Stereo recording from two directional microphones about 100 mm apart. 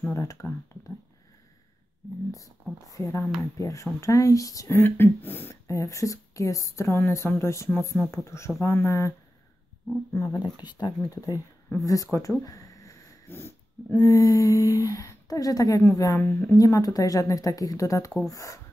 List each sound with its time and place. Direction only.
0.1 s speech: 30° left (ahead or behind)
2.3 s speech: 35° left (ahead or behind)
4.7 s speech: 20° left (ahead or behind)
10.1 s speech: 35° left (ahead or behind)
10.4 s speech: 45° left (ahead or behind)
11.8 s a sound: 35° left (ahead or behind)
13.3 s speech: 25° left (ahead or behind)
13.9 s speech: 35° left (ahead or behind)